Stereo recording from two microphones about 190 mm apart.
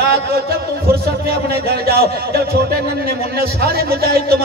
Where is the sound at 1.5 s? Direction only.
55° right (ahead or behind).